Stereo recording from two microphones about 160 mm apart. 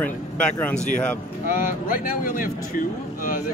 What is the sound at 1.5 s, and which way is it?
Speech, 60° left (ahead or behind).